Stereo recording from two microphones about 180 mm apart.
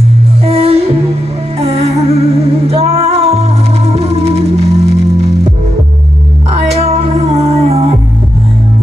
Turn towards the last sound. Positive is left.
turn(degrees=-35)  # may be behind; listen again after turning